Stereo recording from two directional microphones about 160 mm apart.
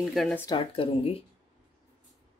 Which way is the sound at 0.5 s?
35° left (ahead or behind).